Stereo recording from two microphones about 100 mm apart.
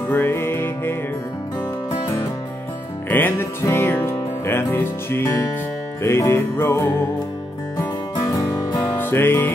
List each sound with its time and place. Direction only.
0.1 s music: 20° left (ahead or behind)
3.1 s music: 20° left (ahead or behind)
8.7 s music: 20° left (ahead or behind)